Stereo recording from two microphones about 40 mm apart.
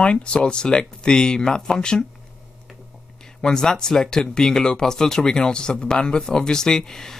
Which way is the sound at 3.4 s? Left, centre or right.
Centre.